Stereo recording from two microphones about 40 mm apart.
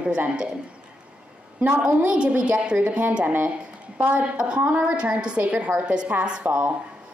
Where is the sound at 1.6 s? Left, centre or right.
Right.